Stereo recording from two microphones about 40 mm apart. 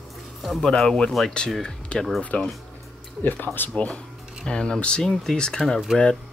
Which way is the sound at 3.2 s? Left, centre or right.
Left.